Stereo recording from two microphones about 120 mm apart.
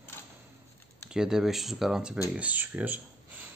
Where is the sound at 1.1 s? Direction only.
5° right (ahead or behind).